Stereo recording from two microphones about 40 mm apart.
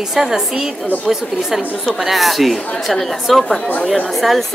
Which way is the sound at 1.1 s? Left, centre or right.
Centre.